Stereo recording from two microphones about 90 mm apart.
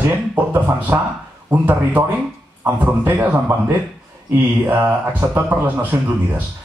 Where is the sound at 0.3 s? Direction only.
20° right (ahead or behind).